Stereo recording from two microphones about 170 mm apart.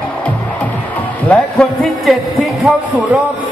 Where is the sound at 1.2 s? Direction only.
5° left (ahead or behind).